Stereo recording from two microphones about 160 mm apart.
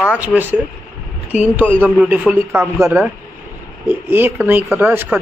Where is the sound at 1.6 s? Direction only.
10° left (ahead or behind).